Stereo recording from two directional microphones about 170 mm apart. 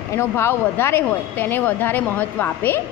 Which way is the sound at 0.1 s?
15° left (ahead or behind).